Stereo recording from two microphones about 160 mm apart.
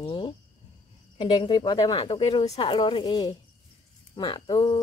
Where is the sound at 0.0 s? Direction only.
30° left (ahead or behind).